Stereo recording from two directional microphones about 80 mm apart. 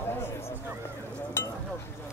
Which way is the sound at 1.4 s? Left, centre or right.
Left.